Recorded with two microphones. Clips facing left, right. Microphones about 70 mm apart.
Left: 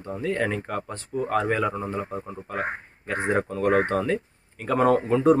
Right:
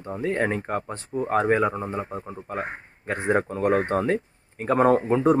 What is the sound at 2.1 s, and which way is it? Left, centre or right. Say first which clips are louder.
Speech: left 1 dB; centre.